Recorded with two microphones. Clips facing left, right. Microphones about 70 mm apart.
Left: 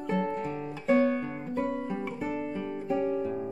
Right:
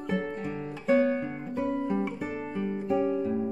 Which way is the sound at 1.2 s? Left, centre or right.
Centre.